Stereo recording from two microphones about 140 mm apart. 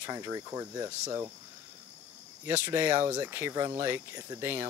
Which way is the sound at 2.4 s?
15° right (ahead or behind).